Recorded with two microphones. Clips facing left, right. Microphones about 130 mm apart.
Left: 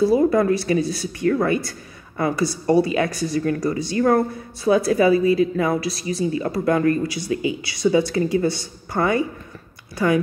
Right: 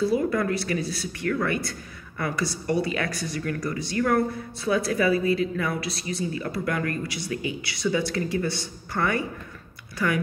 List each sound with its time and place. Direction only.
0.0 s speech: 30° left (ahead or behind)